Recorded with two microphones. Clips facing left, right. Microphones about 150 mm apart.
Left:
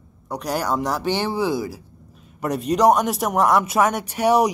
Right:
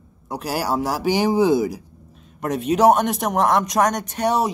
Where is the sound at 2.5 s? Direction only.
Centre (ahead or behind).